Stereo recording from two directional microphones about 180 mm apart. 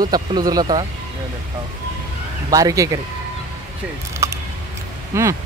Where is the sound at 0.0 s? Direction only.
20° right (ahead or behind).